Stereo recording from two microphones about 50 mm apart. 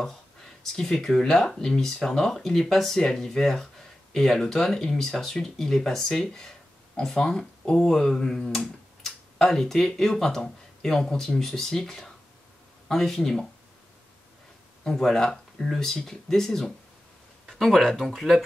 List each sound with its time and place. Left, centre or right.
0.7 s speech: centre
14.9 s speech: centre